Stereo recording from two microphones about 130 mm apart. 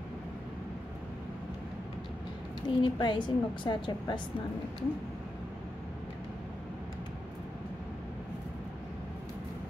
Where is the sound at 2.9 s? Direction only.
35° left (ahead or behind).